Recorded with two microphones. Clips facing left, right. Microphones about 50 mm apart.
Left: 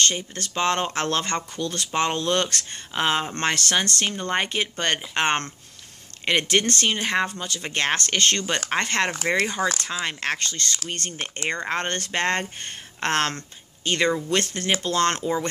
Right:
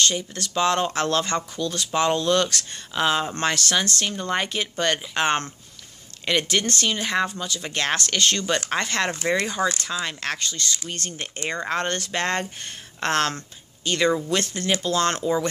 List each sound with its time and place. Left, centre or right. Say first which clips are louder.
0.0 s speech: right 1 dB; left